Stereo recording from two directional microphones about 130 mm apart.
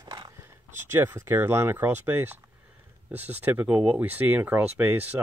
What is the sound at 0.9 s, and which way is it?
Speech, 20° right (ahead or behind).